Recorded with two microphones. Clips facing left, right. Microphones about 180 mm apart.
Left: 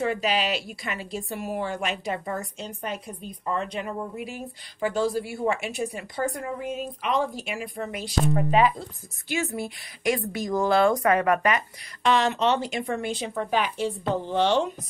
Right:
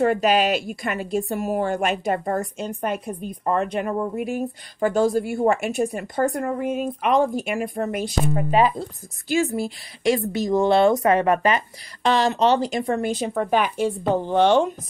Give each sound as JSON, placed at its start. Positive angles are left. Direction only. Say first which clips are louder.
{"t": 0.0, "sound": "a woman's voice", "louder": "right 7 dB", "side_deg": -50}
{"t": 8.5, "sound": "a woman's voice", "louder": "right 2 dB", "side_deg": -40}